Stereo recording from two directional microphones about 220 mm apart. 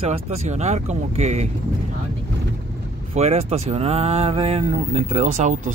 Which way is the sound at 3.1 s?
30° right (ahead or behind).